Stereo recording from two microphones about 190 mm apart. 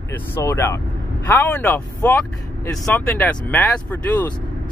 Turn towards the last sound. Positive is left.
turn(degrees=10)  # may be behind; listen again after turning